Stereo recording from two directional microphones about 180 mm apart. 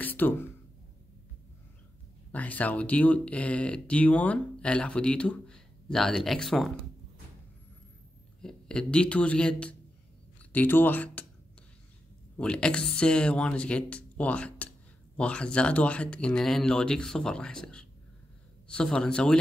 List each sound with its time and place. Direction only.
0.0 s a sound: 10° left (ahead or behind)
2.3 s speech: 10° left (ahead or behind)
8.4 s speech: 5° left (ahead or behind)
12.4 s speech: 5° left (ahead or behind)